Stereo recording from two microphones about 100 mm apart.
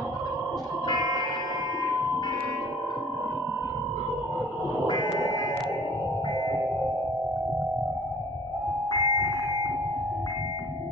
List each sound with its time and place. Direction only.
0.9 s music: 40° right (ahead or behind)
4.8 s a sound: 45° left (ahead or behind)
8.9 s music: 45° left (ahead or behind)